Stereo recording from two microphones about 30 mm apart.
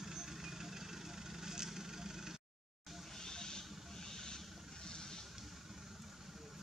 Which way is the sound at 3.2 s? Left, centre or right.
Left.